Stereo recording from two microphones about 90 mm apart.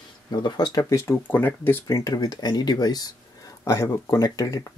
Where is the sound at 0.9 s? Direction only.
25° left (ahead or behind).